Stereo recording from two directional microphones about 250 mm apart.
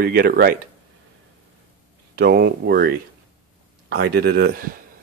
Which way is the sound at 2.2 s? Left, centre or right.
Right.